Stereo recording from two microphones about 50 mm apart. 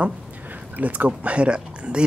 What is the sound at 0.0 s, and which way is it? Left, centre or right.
Speech, right.